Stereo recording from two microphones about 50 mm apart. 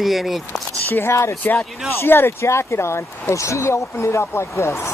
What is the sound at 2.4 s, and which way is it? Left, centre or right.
Speech, left.